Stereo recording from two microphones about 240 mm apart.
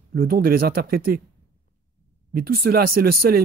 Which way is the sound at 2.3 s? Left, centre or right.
Right.